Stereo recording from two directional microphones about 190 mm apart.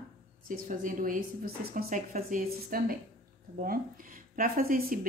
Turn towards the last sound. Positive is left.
turn(degrees=-50)  # may be behind; listen again after turning